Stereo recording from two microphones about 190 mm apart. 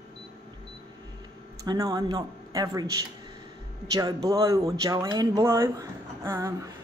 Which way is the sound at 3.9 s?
20° right (ahead or behind).